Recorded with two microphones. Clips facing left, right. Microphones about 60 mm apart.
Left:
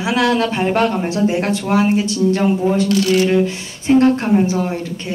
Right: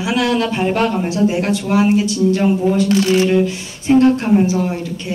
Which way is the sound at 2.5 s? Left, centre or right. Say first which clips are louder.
Right 1 dB; centre.